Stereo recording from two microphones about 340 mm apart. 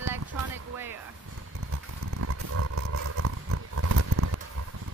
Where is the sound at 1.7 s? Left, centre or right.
Right.